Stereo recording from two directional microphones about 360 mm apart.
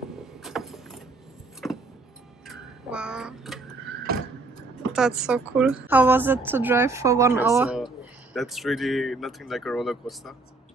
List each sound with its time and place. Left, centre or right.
0.2 s vehicle: centre
2.4 s a sound: centre
4.1 s vehicle: right
4.9 s a woman's voice: centre